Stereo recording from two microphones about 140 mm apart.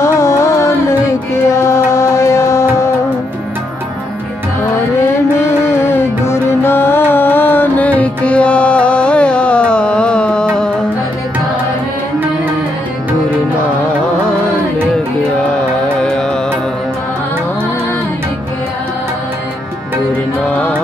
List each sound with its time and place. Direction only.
0.0 s music: 20° left (ahead or behind)
5.4 s music: 20° left (ahead or behind)
15.4 s music: 5° left (ahead or behind)
20.1 s music: 10° left (ahead or behind)